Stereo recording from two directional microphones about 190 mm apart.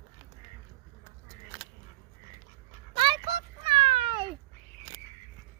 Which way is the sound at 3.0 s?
25° right (ahead or behind).